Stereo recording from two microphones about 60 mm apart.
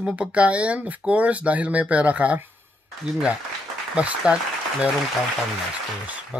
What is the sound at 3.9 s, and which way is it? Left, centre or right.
Speech, centre.